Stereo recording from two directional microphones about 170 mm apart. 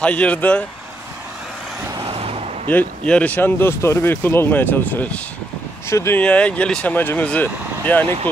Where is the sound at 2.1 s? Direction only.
35° right (ahead or behind).